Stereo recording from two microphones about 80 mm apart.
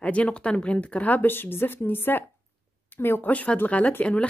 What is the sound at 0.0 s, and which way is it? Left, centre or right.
A woman's voice, centre.